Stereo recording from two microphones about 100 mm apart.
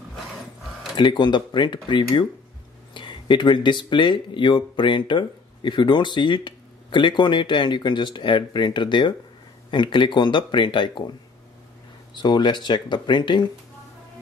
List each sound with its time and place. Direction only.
0.9 s speech: 50° left (ahead or behind)
12.2 s speech: 50° left (ahead or behind)